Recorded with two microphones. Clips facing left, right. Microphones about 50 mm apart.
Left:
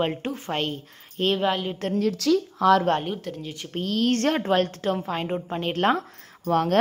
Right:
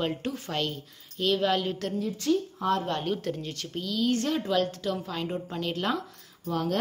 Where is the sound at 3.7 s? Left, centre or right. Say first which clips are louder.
Left 4 dB; left.